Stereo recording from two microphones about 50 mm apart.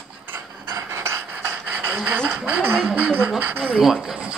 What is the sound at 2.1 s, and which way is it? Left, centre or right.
Speech, right.